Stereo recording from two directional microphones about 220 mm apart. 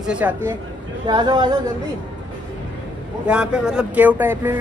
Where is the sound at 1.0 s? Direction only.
20° right (ahead or behind).